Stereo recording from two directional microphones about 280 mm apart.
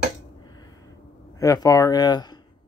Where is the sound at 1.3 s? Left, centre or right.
Centre.